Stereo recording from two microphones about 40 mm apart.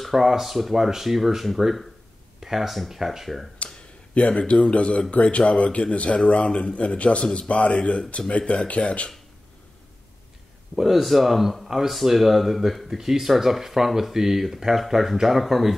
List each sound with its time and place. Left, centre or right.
0.0 s speech: centre
4.3 s speech: left
10.8 s speech: centre